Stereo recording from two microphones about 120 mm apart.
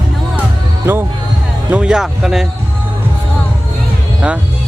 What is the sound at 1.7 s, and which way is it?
Speech, 5° right (ahead or behind).